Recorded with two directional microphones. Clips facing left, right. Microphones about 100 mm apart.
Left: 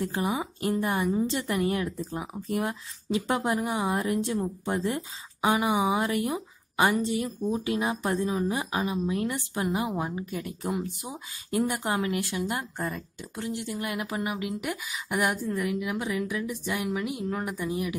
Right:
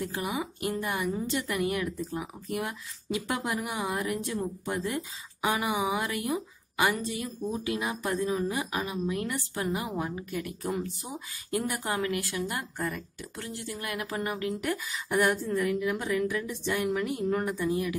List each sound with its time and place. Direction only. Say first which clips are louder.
0.0 s a woman's voice: left 3 dB; 30° left (ahead or behind)